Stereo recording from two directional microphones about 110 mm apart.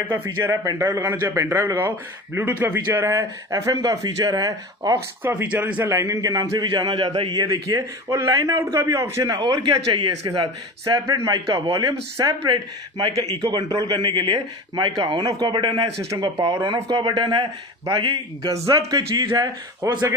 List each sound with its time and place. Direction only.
0.1 s speech: 20° right (ahead or behind)
0.5 s a man's voice: 35° right (ahead or behind)
5.2 s speech: 15° right (ahead or behind)
5.9 s a man's voice: 30° right (ahead or behind); by 7.3 s 55° right (ahead or behind)
7.3 s a man's voice: 40° right (ahead or behind)
8.7 s speech: 25° right (ahead or behind)
9.4 s a man's voice: 45° right (ahead or behind)
18.5 s a man's voice: 30° right (ahead or behind)